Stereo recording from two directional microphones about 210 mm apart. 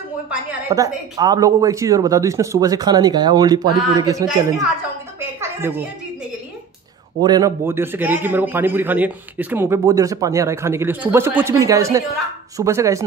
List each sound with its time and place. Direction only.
0.3 s a man's voice: 15° right (ahead or behind)
5.2 s a sound: 10° right (ahead or behind)
7.2 s a man's voice: 20° right (ahead or behind)